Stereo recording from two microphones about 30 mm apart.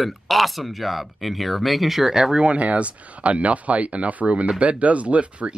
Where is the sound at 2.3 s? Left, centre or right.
Right.